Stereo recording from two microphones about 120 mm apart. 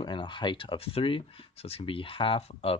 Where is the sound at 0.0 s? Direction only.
40° left (ahead or behind).